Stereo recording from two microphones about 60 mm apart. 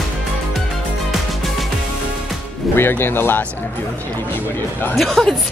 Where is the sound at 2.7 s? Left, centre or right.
Left.